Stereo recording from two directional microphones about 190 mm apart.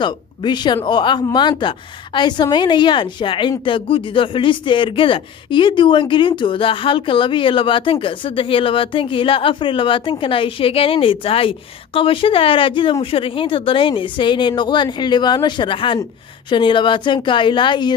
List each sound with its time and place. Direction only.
0.0 s a woman's voice: 25° left (ahead or behind)